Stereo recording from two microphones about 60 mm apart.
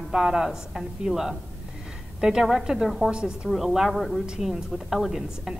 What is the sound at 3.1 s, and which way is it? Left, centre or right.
Speech, centre.